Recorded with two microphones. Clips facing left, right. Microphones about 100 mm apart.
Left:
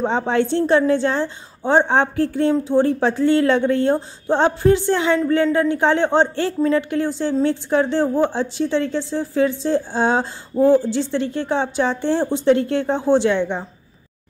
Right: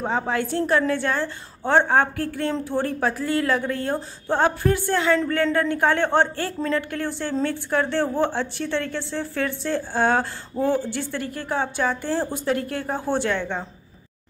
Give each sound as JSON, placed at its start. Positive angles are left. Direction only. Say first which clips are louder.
{"t": 0.3, "sound": "a woman's voice", "louder": "left 6 dB", "side_deg": 25}